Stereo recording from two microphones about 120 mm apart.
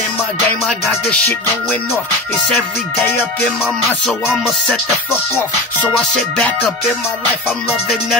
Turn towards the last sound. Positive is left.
turn(degrees=-5)  # may be behind; listen again after turning